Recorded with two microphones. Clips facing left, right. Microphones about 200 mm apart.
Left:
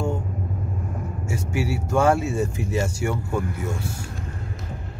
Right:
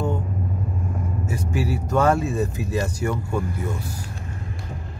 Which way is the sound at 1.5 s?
10° left (ahead or behind).